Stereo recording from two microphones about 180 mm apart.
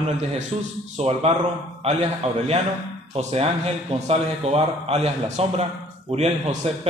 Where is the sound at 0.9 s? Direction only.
35° right (ahead or behind).